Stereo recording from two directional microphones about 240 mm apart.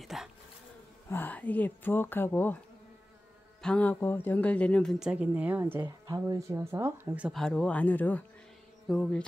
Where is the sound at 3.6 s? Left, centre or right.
Centre.